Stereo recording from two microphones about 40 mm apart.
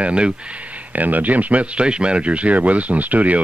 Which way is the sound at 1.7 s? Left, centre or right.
Right.